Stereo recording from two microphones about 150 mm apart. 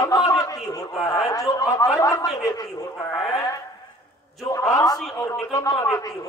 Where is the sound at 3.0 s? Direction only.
10° left (ahead or behind).